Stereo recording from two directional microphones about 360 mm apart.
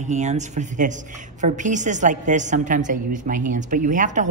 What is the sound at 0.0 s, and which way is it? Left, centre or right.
A woman's voice, centre.